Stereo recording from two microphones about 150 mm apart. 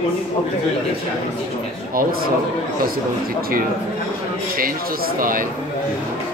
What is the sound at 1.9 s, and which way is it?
Speech, 75° right (ahead or behind).